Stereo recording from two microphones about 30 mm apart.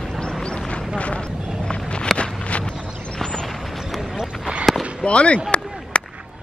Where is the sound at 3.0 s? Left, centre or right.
Left.